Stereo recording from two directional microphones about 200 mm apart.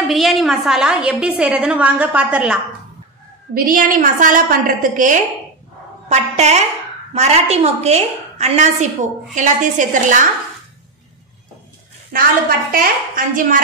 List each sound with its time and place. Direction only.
0.1 s a woman's voice: centre (ahead or behind)
3.5 s a woman's voice: 45° right (ahead or behind)
12.1 s a woman's voice: 45° right (ahead or behind)